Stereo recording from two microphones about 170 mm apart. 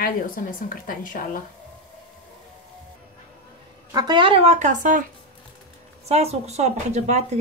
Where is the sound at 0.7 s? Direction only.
55° left (ahead or behind).